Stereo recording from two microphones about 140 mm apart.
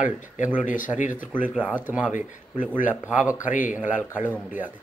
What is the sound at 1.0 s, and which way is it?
Speech, 65° left (ahead or behind).